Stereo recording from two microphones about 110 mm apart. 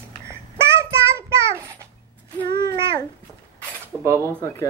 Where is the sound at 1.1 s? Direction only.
25° right (ahead or behind).